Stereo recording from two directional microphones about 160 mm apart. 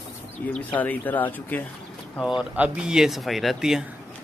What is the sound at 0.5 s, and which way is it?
Speech, 10° left (ahead or behind).